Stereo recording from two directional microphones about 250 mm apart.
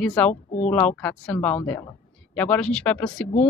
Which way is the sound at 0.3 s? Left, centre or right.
Left.